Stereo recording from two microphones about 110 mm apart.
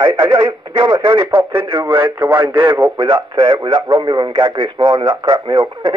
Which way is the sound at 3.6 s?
45° right (ahead or behind).